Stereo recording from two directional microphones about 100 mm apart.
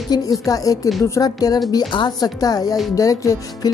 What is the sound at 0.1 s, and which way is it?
A woman's voice, 35° left (ahead or behind).